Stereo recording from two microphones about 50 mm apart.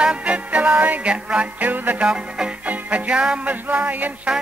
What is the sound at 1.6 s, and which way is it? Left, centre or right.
Music, right.